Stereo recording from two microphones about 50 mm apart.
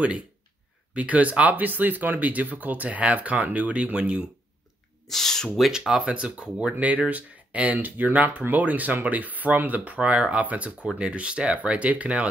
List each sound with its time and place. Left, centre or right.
0.9 s speech: right
5.0 s speech: centre
5.7 s speech: centre
6.9 s speech: right